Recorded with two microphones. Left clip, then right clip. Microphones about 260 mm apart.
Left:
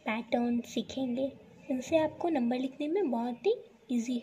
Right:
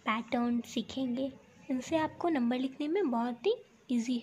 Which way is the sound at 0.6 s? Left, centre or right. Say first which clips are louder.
Left 1 dB; centre.